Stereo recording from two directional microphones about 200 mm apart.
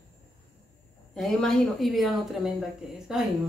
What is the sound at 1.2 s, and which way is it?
Speech, centre (ahead or behind).